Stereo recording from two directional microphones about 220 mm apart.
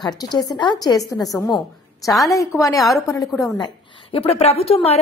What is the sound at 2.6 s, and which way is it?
A woman's voice, 15° left (ahead or behind).